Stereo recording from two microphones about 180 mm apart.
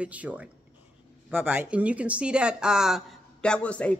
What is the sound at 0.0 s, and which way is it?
A man's voice, 10° right (ahead or behind).